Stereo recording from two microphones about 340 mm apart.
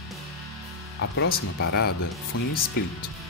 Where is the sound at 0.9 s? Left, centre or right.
Left.